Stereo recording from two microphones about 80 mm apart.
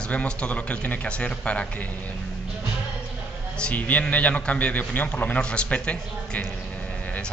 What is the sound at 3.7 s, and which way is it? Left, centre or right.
Speech, centre.